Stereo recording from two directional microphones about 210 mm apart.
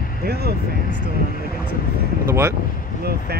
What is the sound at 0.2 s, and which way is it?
Speech, 50° right (ahead or behind).